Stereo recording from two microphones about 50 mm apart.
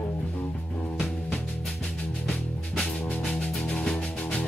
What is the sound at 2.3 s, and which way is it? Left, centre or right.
Music, centre.